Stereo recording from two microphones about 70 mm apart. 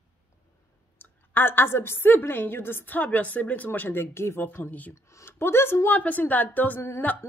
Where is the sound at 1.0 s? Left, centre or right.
Left.